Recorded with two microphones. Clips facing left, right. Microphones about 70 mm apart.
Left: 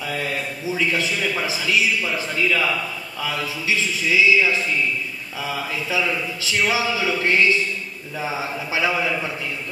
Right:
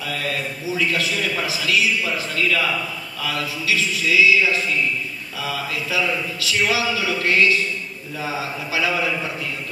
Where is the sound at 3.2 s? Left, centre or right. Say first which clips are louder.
Right 1 dB; left.